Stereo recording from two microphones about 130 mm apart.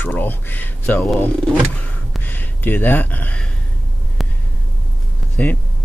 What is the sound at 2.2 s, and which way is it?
Speech, 15° left (ahead or behind).